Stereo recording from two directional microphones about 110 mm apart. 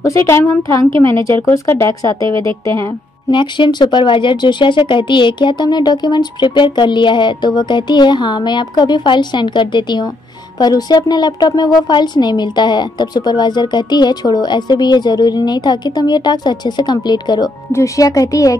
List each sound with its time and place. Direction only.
0.0 s a woman's voice: 25° left (ahead or behind)
3.3 s speech: 45° left (ahead or behind)